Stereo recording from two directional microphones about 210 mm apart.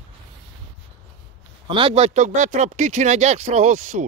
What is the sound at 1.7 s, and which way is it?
Speech, 25° right (ahead or behind).